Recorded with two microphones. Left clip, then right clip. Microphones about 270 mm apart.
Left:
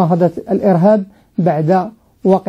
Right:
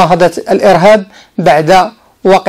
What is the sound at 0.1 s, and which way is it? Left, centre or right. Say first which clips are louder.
Speech: right 7 dB; centre.